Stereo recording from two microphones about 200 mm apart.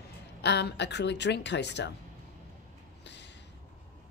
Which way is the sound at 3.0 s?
60° left (ahead or behind).